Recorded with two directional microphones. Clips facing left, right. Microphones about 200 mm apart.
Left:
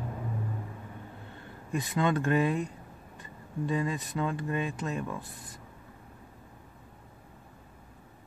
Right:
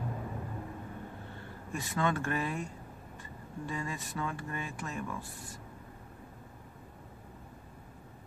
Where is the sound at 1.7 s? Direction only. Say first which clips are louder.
Left 4 dB; 20° left (ahead or behind).